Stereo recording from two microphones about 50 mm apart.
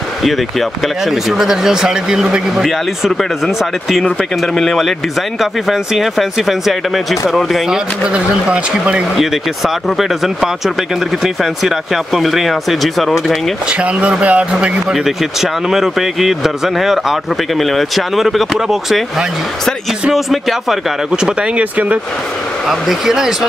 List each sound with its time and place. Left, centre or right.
1.3 s a man's voice: centre
2.6 s speech: centre
8.0 s speech: centre
9.8 s speech: centre
13.7 s speech: right
14.9 s speech: centre
21.5 s speech: right
22.7 s a man's voice: centre